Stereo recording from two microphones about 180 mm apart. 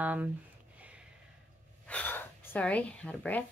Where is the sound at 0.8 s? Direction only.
5° right (ahead or behind).